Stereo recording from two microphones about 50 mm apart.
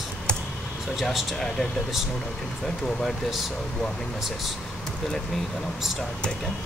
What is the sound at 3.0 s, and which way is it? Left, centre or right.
Speech, centre.